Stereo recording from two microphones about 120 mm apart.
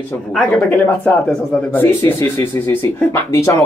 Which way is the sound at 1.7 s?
15° left (ahead or behind).